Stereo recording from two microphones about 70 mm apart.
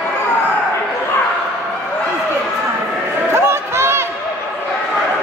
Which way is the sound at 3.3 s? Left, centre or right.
Right.